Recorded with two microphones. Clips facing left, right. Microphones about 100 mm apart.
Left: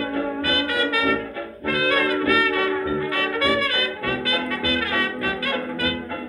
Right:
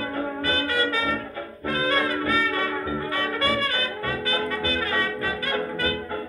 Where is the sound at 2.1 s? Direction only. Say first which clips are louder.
Left 4 dB; 35° right (ahead or behind).